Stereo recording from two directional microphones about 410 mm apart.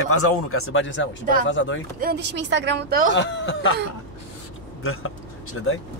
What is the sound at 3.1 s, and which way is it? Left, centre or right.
Speech, left.